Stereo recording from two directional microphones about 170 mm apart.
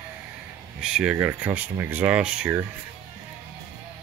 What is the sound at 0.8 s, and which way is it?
Speech, 5° right (ahead or behind).